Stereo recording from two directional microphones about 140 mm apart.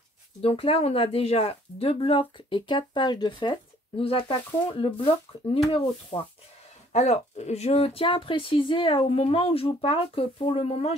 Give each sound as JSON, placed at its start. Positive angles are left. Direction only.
{"t": 0.4, "sound": "speech", "side_deg": 45}
{"t": 6.9, "sound": "speech", "side_deg": 50}